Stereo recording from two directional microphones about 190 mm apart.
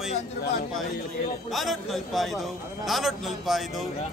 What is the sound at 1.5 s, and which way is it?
A man's voice, centre (ahead or behind).